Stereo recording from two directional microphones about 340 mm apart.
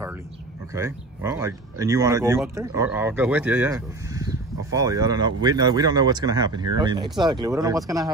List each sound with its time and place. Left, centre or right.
0.7 s speech: centre